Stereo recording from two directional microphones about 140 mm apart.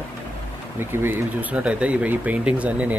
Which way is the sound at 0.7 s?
15° right (ahead or behind).